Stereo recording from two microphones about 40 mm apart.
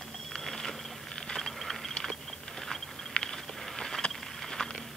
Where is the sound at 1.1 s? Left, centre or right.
Centre.